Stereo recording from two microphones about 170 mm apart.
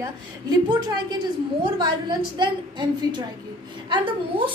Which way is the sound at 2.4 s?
25° right (ahead or behind).